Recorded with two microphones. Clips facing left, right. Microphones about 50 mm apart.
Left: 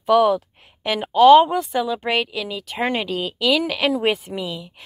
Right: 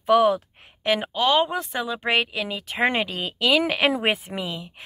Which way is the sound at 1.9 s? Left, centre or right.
Centre.